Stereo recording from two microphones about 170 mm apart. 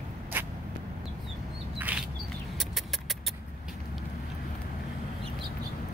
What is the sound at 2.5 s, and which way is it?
Vehicle, centre (ahead or behind).